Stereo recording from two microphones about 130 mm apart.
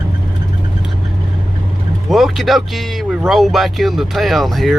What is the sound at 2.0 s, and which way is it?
Speech, centre (ahead or behind).